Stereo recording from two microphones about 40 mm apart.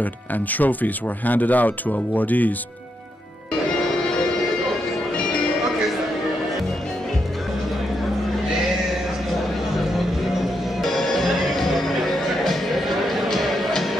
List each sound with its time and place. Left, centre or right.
0.0 s speech: left
10.8 s music: centre